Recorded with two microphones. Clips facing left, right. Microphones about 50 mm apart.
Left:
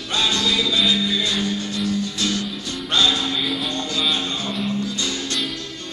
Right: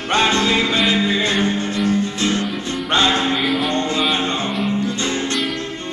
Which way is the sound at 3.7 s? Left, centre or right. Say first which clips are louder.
Right 5 dB; right.